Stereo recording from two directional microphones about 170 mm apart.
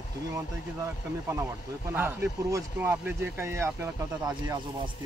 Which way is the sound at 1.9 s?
10° right (ahead or behind).